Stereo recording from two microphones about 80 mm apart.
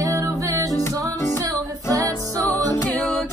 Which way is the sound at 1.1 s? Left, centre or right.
Left.